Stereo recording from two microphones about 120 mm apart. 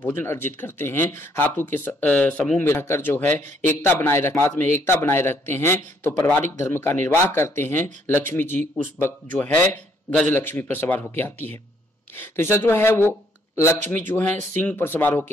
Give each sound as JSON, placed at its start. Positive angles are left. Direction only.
{"t": 0.0, "sound": "speech", "side_deg": 20}
{"t": 2.6, "sound": "speech", "side_deg": 20}